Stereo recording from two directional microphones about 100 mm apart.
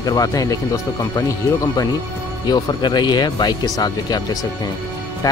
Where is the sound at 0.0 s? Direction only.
40° left (ahead or behind).